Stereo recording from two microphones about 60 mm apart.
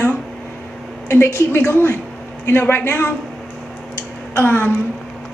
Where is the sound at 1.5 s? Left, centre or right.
Left.